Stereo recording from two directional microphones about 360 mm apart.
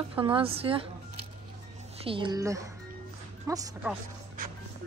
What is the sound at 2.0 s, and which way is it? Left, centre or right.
Speech, centre.